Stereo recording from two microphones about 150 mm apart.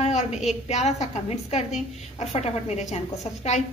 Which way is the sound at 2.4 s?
45° left (ahead or behind).